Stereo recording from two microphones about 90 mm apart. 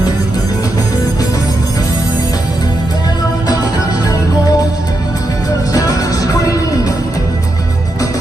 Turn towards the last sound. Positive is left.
turn(degrees=40)  # may be behind; listen again after turning